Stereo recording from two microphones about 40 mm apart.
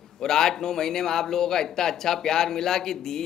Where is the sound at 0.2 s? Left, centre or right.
Centre.